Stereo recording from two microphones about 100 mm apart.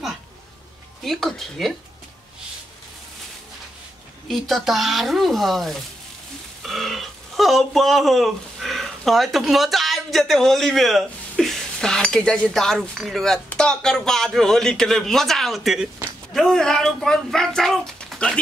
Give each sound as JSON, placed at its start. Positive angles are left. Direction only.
{"t": 1.0, "sound": "a man's voice", "side_deg": 0}
{"t": 4.3, "sound": "a man's voice", "side_deg": 0}